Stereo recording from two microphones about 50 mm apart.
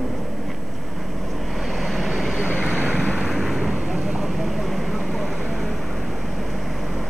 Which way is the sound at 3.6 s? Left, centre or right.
Centre.